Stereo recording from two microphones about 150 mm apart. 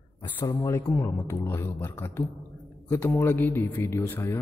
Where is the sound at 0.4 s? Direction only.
25° left (ahead or behind).